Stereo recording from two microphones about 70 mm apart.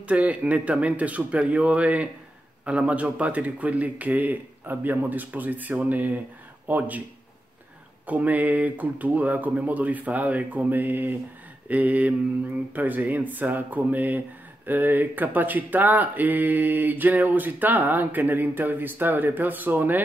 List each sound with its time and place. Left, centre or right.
0.0 s speech: centre
8.1 s speech: right